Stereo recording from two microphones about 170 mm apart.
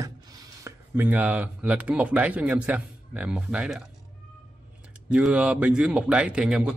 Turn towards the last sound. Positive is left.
turn(degrees=-5)  # may be behind; listen again after turning